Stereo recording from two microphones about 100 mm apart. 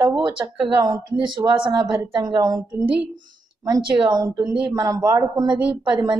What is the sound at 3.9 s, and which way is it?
A man's voice, 45° right (ahead or behind).